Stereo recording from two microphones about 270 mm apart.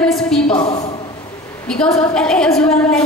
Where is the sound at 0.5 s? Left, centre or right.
Left.